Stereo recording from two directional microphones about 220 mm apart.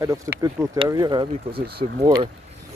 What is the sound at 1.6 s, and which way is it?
Speech, 45° right (ahead or behind).